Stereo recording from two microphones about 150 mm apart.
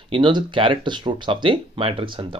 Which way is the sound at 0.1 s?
30° right (ahead or behind).